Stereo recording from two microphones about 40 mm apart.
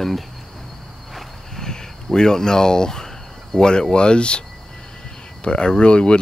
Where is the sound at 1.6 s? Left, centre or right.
Centre.